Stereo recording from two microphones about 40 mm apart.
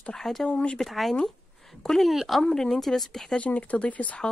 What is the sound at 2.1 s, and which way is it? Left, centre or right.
Speech, centre.